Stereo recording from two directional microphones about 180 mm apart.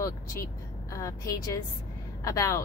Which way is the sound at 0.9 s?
20° left (ahead or behind).